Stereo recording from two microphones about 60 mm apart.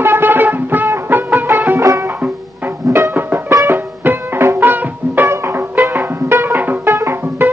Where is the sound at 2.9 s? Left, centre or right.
Right.